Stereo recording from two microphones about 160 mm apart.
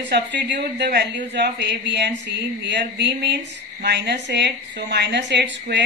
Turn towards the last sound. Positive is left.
turn(degrees=-90)